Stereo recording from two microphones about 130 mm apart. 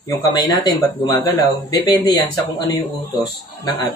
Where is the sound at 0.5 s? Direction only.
30° left (ahead or behind).